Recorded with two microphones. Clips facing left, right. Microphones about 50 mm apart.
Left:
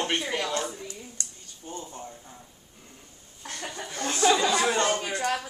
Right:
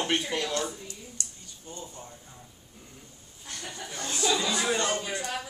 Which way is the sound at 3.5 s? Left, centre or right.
Left.